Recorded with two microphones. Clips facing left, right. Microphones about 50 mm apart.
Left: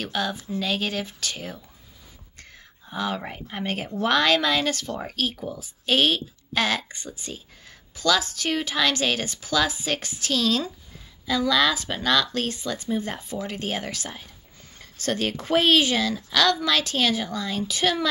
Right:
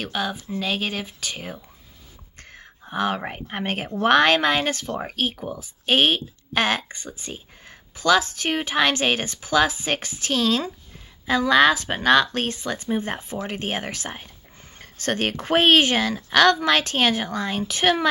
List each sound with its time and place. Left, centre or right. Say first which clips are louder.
0.0 s speech: right 1 dB; centre
2.3 s speech: right 5 dB; right
14.8 s a sound: right 2 dB; right
15.4 s speech: right 3 dB; right